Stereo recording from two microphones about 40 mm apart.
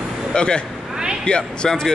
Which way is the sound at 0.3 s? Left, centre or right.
Left.